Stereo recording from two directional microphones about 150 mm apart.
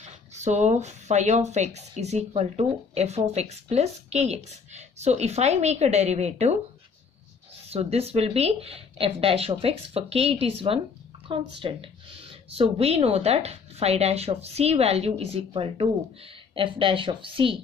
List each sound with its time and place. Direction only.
0.0 s speech: 50° right (ahead or behind)
7.7 s speech: 45° right (ahead or behind)